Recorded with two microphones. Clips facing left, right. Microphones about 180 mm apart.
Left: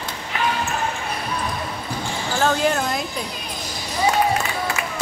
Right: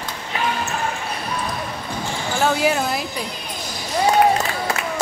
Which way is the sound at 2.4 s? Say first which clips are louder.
Right 1 dB; 10° right (ahead or behind).